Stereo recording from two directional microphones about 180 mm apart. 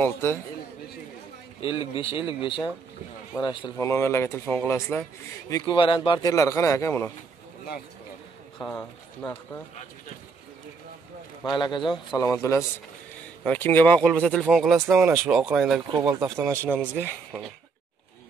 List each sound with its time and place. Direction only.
0.0 s speech: 10° left (ahead or behind)
1.6 s speech: 30° left (ahead or behind)
5.5 s speech: 25° left (ahead or behind)
8.5 s speech: 10° left (ahead or behind)
11.5 s speech: 25° left (ahead or behind)
11.8 s speech: centre (ahead or behind)
12.2 s speech: 15° left (ahead or behind); by 15.8 s 5° right (ahead or behind)
16.0 s speech: 15° right (ahead or behind)